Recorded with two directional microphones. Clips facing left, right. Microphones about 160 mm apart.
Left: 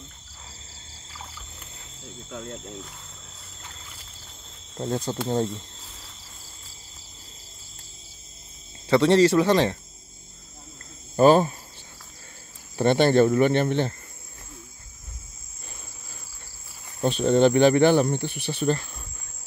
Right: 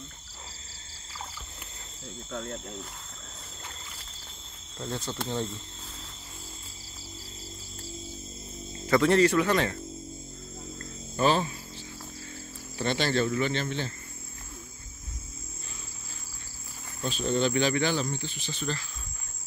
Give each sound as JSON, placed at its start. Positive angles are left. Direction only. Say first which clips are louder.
{"t": 2.2, "sound": "speech", "louder": "even", "side_deg": 15}
{"t": 4.7, "sound": "speech", "louder": "left 7 dB", "side_deg": 35}
{"t": 8.9, "sound": "speech", "louder": "left 4 dB", "side_deg": 30}
{"t": 11.1, "sound": "speech", "louder": "left 9 dB", "side_deg": 45}
{"t": 12.7, "sound": "speech", "louder": "left 9 dB", "side_deg": 55}
{"t": 17.0, "sound": "speech", "louder": "left 9 dB", "side_deg": 60}